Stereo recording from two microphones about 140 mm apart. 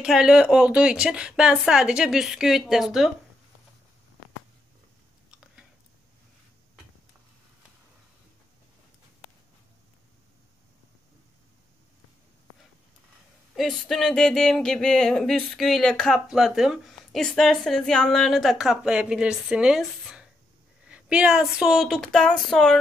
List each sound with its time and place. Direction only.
0.0 s speech: 5° right (ahead or behind)
13.6 s speech: centre (ahead or behind)